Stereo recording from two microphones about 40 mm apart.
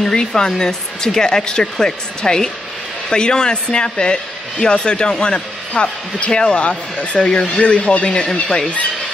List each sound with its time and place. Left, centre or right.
0.0 s a woman's voice: centre